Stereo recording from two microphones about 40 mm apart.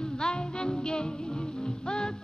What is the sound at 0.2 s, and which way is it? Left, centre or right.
Music, left.